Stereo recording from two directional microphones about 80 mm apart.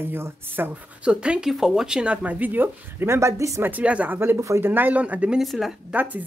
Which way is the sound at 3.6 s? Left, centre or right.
Centre.